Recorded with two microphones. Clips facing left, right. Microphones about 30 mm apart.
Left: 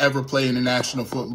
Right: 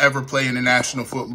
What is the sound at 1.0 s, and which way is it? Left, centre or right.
Speech, right.